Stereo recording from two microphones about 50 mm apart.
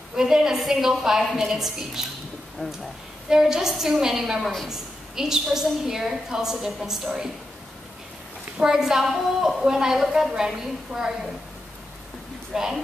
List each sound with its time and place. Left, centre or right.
0.1 s a woman's voice: centre
2.6 s speech: centre
3.3 s a woman's voice: centre
8.5 s a woman's voice: centre
12.5 s a woman's voice: centre